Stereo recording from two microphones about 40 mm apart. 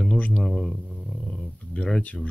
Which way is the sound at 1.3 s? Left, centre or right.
Centre.